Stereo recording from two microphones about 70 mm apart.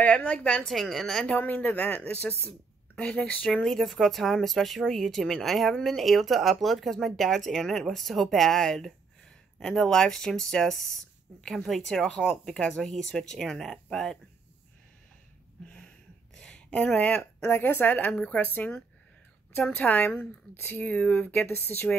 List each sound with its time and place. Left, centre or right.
0.0 s speech: left
0.7 s speech: centre
1.3 s speech: left
3.0 s speech: centre
3.3 s speech: left
3.6 s speech: centre
16.3 s a sound: centre
17.4 s speech: left
19.8 s speech: left
21.5 s speech: left